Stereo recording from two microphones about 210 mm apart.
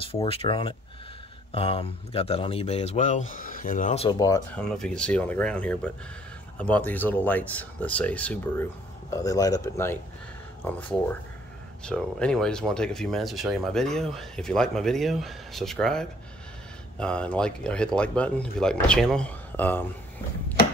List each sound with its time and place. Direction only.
0.0 s speech: 25° left (ahead or behind)
4.2 s speech: 15° left (ahead or behind)
4.6 s speech: 5° left (ahead or behind)